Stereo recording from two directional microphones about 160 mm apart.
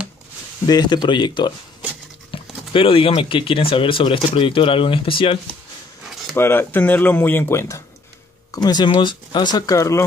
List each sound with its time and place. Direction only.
0.7 s speech: 25° left (ahead or behind)
6.3 s speech: 15° left (ahead or behind)
8.6 s speech: 30° left (ahead or behind)